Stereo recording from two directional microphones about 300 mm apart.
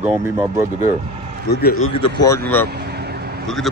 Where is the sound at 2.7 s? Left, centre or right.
Right.